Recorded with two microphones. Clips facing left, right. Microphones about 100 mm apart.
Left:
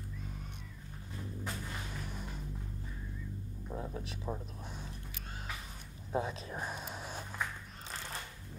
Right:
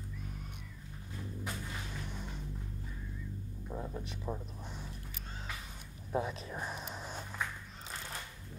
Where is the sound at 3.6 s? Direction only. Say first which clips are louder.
Even; centre (ahead or behind).